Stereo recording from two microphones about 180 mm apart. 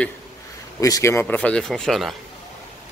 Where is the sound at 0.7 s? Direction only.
20° left (ahead or behind).